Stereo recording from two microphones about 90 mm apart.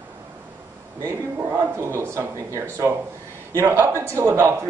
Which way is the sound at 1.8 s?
30° right (ahead or behind).